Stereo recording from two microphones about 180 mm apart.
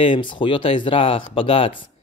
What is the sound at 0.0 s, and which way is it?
Speech, 25° left (ahead or behind).